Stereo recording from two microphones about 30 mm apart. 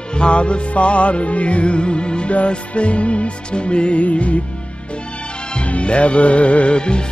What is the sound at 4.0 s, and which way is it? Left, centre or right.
Music, left.